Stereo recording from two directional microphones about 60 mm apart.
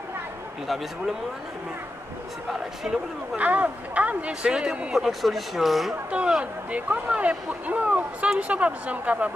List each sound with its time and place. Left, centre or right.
3.3 s speech: right
4.3 s speech: centre
6.1 s speech: centre